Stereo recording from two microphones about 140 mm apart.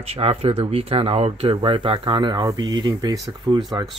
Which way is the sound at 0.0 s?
45° right (ahead or behind).